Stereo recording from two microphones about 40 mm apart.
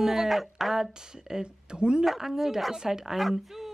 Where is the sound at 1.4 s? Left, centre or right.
Right.